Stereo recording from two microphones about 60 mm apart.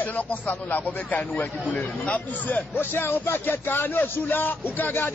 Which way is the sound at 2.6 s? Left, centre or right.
Left.